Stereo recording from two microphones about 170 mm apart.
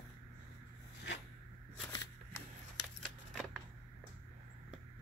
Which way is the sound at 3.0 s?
Centre (ahead or behind).